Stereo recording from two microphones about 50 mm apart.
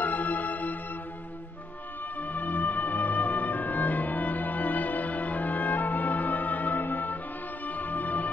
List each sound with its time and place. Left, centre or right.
0.0 s music: left
2.2 s music: left